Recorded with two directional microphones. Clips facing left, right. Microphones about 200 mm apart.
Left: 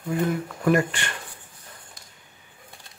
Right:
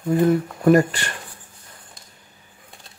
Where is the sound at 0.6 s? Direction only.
40° right (ahead or behind).